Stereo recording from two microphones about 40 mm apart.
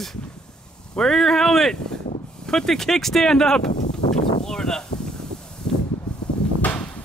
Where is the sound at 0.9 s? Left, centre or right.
Centre.